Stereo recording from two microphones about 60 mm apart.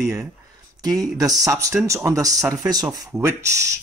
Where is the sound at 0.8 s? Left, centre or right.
Right.